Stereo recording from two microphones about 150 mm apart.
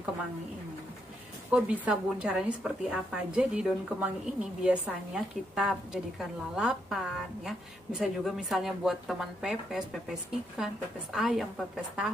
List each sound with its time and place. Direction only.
1.5 s a woman's voice: 10° right (ahead or behind)